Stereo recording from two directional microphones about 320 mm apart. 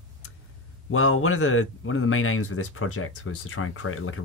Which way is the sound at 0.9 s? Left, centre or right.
Left.